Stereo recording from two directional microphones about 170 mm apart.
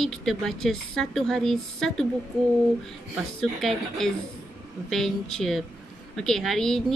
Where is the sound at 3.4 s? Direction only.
Centre (ahead or behind).